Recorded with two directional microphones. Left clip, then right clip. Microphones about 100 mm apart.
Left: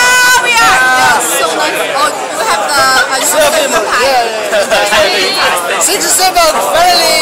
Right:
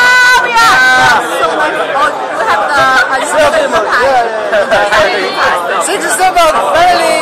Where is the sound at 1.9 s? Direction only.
25° left (ahead or behind).